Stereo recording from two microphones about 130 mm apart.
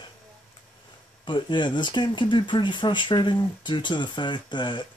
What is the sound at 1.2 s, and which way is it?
Speech, 35° left (ahead or behind).